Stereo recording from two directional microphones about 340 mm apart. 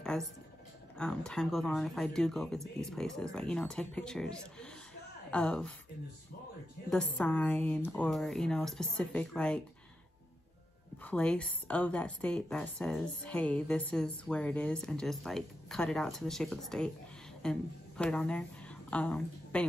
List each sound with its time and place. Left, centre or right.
0.1 s a woman's voice: centre
6.9 s a woman's voice: centre
11.1 s a woman's voice: centre